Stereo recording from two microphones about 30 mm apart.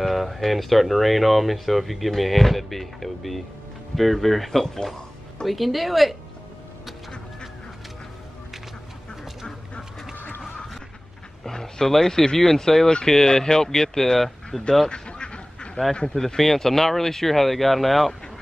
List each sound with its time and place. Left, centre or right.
0.0 s speech: centre
5.4 s speech: centre
10.1 s a sound: left
11.4 s dog: centre
12.0 s speech: centre
14.9 s quack: left
16.3 s speech: centre